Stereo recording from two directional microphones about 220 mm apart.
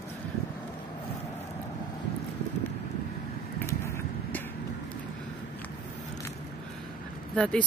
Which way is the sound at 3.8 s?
10° left (ahead or behind).